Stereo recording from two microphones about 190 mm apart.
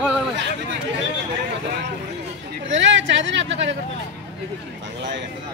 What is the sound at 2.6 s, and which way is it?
Speech, 75° right (ahead or behind).